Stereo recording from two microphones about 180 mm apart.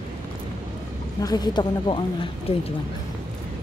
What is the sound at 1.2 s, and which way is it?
Speech, 20° left (ahead or behind).